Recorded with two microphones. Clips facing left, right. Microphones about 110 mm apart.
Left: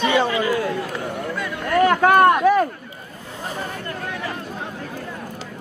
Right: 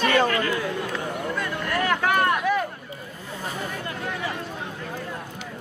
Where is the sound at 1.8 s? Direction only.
40° left (ahead or behind).